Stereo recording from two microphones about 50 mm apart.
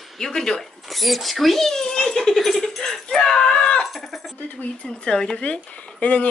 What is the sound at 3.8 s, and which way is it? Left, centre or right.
Speech, centre.